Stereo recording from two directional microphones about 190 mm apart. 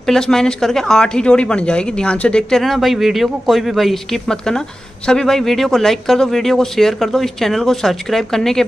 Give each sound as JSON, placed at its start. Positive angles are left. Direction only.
{"t": 0.0, "sound": "speech", "side_deg": 0}